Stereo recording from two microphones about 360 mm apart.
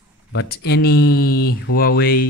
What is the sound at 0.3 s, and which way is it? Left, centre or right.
Speech, left.